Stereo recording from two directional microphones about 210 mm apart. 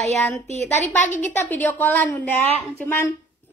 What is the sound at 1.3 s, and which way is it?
A woman's voice, 10° left (ahead or behind).